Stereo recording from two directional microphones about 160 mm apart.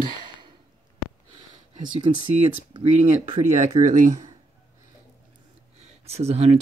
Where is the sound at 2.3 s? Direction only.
40° right (ahead or behind).